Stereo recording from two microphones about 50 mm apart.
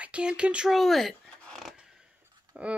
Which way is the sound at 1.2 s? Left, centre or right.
Centre.